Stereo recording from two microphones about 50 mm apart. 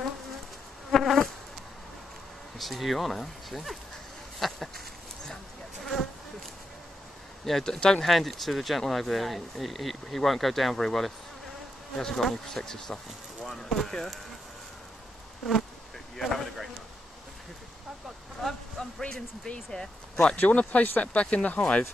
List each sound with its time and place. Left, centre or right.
0.9 s insect: centre
2.6 s speech: centre
4.4 s a sound: centre
7.4 s speech: centre
16.2 s speech: centre
18.4 s speech: centre
20.3 s speech: left